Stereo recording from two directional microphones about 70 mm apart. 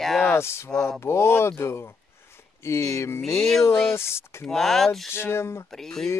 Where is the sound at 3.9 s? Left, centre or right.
Left.